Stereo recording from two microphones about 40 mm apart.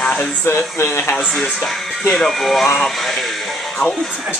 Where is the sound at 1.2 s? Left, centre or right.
Centre.